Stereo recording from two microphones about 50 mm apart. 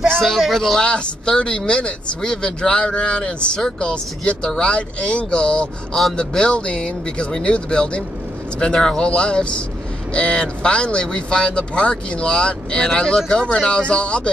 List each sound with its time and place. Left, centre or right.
0.1 s speech: centre
0.7 s speech: centre